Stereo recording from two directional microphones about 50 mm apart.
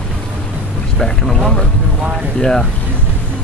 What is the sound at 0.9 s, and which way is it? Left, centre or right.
Speech, centre.